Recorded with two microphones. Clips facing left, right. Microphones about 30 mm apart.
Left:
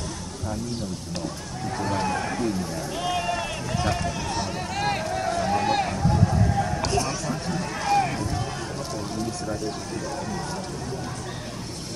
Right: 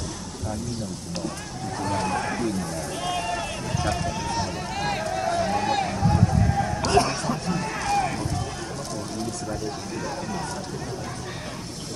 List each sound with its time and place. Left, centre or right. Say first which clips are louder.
1.8 s speech: even; centre
2.7 s a sound: left 1 dB; centre
3.8 s speech: even; centre
5.9 s boat: right 1 dB; centre
6.2 s vehicle: even; centre
6.9 s speech: right 5 dB; right
7.2 s speech: right 2 dB; centre
7.8 s vehicle: left 3 dB; centre